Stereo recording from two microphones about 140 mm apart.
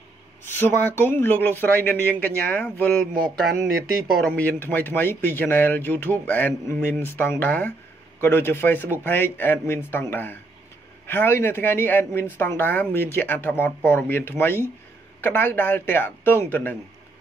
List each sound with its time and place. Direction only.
0.5 s speech: 15° left (ahead or behind)
4.2 s speech: 10° left (ahead or behind)